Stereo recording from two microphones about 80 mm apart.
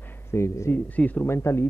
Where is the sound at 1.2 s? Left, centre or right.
Left.